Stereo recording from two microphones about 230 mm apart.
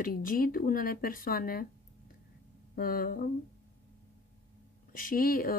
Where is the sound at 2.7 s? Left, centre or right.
Left.